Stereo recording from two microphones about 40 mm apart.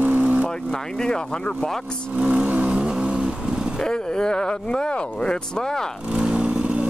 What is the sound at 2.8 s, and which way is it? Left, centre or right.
Vehicle, right.